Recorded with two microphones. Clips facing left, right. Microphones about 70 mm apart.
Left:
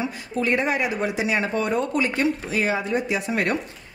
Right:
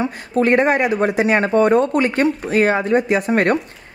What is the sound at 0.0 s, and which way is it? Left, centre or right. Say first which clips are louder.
Speech: right 7 dB; right.